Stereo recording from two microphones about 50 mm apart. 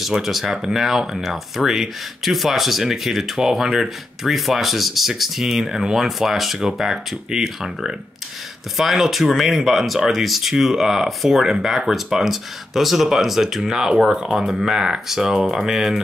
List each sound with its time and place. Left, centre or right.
0.0 s speech: centre